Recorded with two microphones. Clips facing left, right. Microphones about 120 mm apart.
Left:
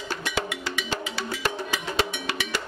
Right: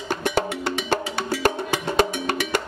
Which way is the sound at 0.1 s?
50° right (ahead or behind).